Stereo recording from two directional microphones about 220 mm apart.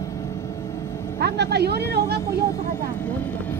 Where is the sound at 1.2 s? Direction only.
50° right (ahead or behind).